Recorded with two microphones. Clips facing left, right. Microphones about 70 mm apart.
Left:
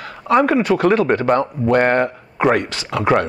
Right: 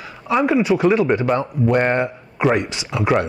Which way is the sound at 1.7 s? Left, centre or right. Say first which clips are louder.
Left 5 dB; left.